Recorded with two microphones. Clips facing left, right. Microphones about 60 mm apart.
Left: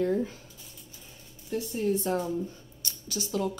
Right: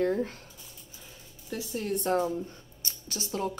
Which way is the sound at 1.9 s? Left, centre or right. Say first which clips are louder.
Right 1 dB; right.